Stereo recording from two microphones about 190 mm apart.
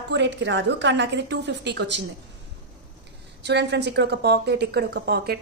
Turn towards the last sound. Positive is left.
turn(degrees=-55)  # may be behind; listen again after turning